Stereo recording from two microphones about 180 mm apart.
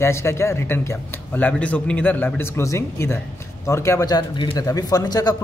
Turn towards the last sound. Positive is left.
turn(degrees=20)  # may be behind; listen again after turning